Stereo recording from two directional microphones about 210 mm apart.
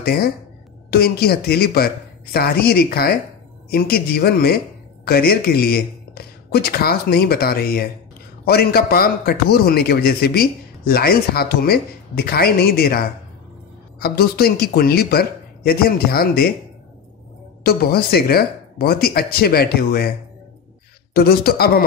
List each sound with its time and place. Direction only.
0.0 s a man's voice: 45° left (ahead or behind)
17.6 s a man's voice: 45° left (ahead or behind)
21.1 s a man's voice: 45° left (ahead or behind)